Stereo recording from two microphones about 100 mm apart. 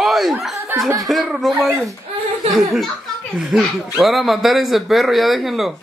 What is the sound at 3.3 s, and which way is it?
Speech, 5° right (ahead or behind).